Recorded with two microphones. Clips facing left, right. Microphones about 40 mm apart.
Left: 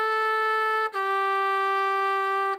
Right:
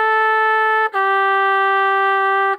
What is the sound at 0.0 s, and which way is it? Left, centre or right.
Trumpet, right.